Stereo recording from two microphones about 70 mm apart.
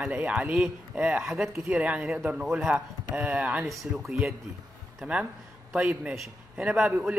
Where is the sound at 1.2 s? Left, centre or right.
Centre.